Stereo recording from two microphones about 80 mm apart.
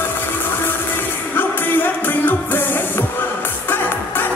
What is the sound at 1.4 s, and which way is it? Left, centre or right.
Music, left.